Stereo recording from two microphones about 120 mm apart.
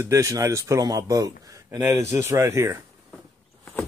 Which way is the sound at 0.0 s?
25° right (ahead or behind).